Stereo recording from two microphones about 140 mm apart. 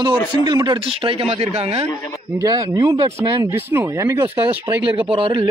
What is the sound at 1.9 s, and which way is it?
Speech, 20° left (ahead or behind).